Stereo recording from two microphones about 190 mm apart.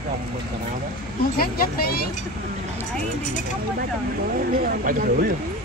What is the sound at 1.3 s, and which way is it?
Speech, 50° left (ahead or behind).